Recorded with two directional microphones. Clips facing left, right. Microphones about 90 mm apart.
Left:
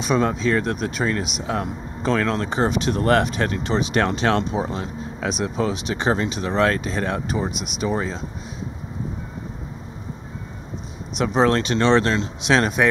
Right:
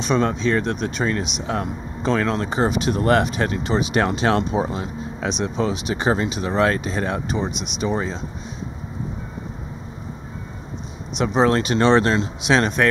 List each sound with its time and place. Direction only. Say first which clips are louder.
0.0 s speech: even; 5° left (ahead or behind)
11.1 s speech: right 1 dB; 5° right (ahead or behind)
12.4 s speech: left 2 dB; centre (ahead or behind)